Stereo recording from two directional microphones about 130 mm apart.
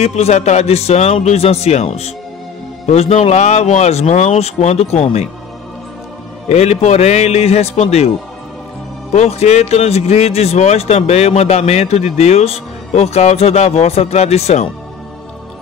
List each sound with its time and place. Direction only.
0.0 s speech: 55° left (ahead or behind)
6.5 s speech: 55° left (ahead or behind)
9.1 s speech: 55° left (ahead or behind)